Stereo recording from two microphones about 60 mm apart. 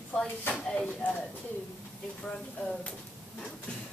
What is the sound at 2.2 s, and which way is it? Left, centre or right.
Speech, centre.